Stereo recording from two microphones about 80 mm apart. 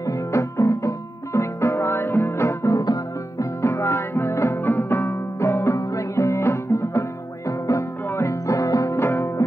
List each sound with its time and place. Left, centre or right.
0.0 s music: left
2.7 s music: left
3.6 s music: left
4.6 s music: left
5.0 s music: left